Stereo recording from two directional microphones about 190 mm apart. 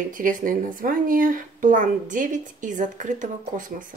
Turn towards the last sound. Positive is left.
turn(degrees=-45)  # may be behind; listen again after turning